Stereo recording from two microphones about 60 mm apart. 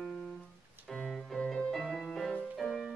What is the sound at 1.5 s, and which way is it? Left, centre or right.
Music, centre.